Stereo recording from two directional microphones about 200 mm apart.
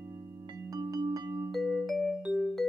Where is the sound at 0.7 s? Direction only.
20° right (ahead or behind).